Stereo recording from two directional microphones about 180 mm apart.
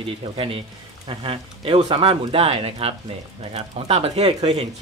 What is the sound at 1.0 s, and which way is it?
Speech, 30° right (ahead or behind).